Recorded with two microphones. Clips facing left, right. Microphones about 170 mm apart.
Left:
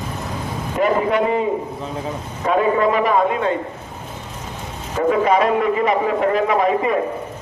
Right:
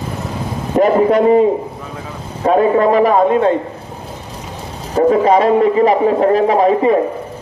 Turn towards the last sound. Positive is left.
turn(degrees=-35)  # may be behind; listen again after turning